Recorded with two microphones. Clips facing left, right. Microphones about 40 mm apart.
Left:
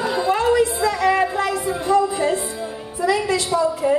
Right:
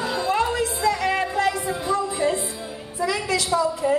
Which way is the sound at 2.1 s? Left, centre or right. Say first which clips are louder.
Left 2 dB; left.